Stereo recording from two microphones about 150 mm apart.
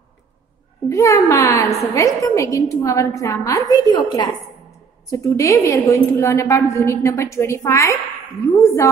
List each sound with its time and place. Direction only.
0.8 s a woman's voice: 20° left (ahead or behind)